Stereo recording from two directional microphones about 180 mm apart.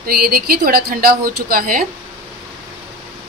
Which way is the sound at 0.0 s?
55° right (ahead or behind).